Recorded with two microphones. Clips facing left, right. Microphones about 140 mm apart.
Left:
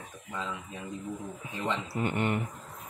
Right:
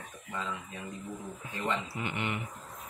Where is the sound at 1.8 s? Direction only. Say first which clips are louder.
Left 6 dB; 40° left (ahead or behind).